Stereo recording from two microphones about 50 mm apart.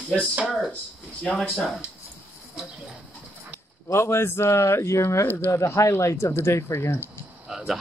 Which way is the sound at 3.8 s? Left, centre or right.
Left.